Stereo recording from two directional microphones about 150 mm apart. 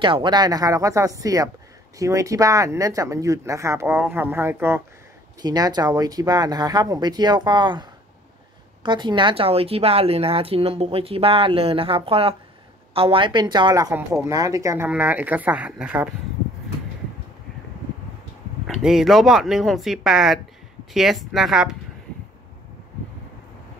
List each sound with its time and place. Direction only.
0.0 s speech: 30° right (ahead or behind); by 4.8 s 15° right (ahead or behind)
5.4 s a woman's voice: 25° right (ahead or behind); by 16.1 s 10° right (ahead or behind)
18.7 s speech: 5° right (ahead or behind)